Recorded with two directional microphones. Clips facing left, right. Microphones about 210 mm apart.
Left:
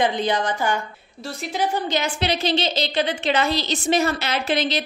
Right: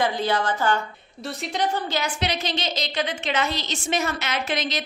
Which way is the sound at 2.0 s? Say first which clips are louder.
Left 3 dB; 30° left (ahead or behind).